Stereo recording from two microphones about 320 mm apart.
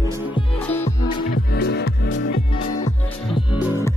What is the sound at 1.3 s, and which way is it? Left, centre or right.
Music, left.